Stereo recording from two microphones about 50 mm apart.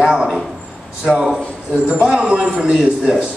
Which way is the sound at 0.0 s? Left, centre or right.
Centre.